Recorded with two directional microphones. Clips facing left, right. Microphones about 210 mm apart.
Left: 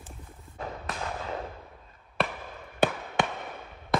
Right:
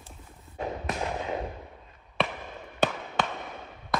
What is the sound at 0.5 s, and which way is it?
Fireworks, 20° right (ahead or behind).